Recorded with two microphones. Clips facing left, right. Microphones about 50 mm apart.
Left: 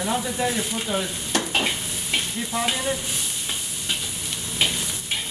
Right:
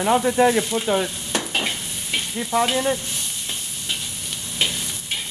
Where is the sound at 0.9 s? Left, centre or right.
Right.